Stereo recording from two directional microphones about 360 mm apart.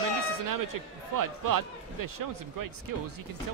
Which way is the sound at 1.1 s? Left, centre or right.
Right.